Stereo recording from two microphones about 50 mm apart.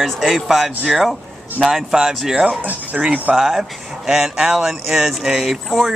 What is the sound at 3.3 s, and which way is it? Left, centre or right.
Speech, centre.